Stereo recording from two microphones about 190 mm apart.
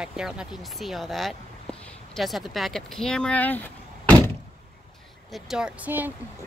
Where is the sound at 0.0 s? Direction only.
5° right (ahead or behind).